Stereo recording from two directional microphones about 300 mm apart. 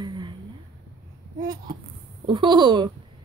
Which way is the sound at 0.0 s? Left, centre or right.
Centre.